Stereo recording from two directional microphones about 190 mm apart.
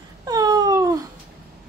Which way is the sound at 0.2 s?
20° right (ahead or behind).